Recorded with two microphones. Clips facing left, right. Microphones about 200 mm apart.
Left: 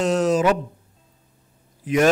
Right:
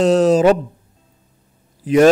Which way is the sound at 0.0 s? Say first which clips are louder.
Right 7 dB; 30° right (ahead or behind).